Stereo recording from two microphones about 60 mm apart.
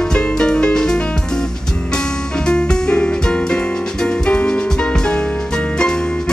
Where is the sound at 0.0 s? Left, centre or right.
Centre.